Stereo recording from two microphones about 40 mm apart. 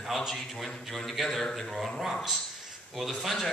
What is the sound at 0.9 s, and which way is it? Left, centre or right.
A man's voice, centre.